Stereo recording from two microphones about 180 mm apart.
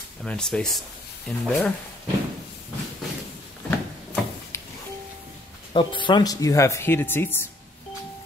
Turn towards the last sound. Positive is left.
turn(degrees=10)  # may be behind; listen again after turning